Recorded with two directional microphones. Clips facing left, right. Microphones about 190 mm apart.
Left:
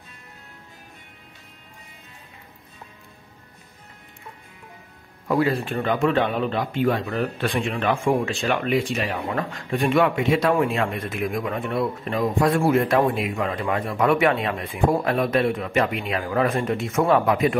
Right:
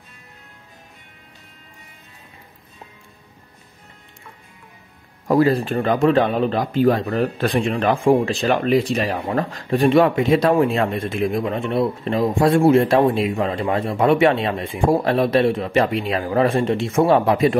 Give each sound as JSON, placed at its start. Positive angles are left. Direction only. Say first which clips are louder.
{"t": 5.3, "sound": "speech", "louder": "right 5 dB", "side_deg": -40}